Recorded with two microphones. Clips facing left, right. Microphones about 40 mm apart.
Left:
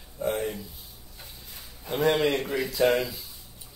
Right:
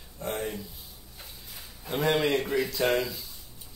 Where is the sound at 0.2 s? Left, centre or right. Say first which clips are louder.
Left 4 dB; centre.